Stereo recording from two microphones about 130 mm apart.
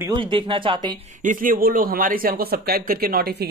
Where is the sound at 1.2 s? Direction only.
90° right.